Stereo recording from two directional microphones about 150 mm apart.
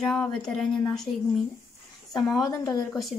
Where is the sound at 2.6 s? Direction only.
20° left (ahead or behind).